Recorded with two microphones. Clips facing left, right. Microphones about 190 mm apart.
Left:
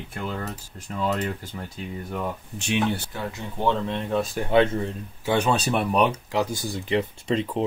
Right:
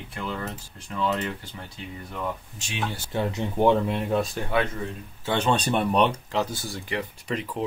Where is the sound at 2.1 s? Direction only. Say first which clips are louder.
Even; 60° left (ahead or behind).